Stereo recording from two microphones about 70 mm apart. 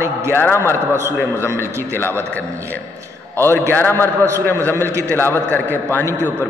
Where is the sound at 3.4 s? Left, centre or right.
Left.